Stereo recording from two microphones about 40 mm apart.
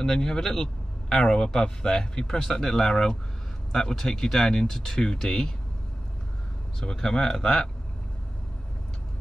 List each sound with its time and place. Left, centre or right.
0.0 s speech: centre
6.8 s speech: centre